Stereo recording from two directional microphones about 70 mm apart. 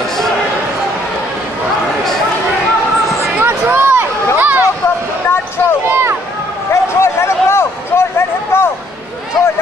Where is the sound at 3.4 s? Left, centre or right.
Right.